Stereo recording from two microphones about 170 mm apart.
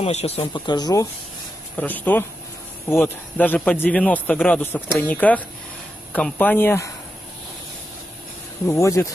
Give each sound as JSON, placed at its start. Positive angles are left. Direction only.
{"t": 0.0, "sound": "speech", "side_deg": 40}
{"t": 1.8, "sound": "speech", "side_deg": 10}
{"t": 8.6, "sound": "speech", "side_deg": 15}